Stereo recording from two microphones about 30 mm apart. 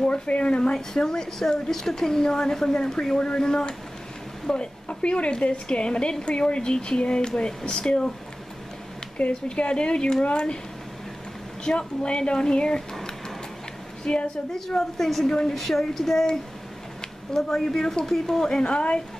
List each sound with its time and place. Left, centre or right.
0.3 s a woman's voice: left
0.7 s a woman's voice: centre
4.8 s a woman's voice: left
9.2 s a woman's voice: left
9.6 s a woman's voice: left
11.6 s a woman's voice: left
14.0 s a woman's voice: left
14.5 s speech: centre
17.4 s speech: centre
17.7 s a woman's voice: left
18.0 s speech: centre
18.6 s a woman's voice: left